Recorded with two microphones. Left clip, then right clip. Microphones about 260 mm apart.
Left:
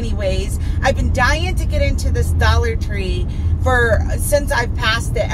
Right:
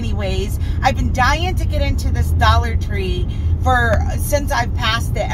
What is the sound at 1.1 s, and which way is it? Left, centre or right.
Speech, centre.